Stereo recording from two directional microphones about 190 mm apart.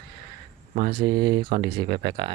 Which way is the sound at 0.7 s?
25° right (ahead or behind).